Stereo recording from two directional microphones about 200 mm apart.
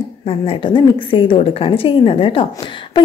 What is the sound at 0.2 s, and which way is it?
A woman's voice, 30° left (ahead or behind).